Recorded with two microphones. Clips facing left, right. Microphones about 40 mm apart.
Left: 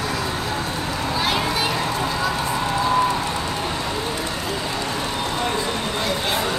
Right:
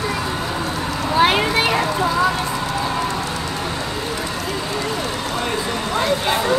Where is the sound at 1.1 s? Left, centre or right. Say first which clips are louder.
Right 8 dB; right.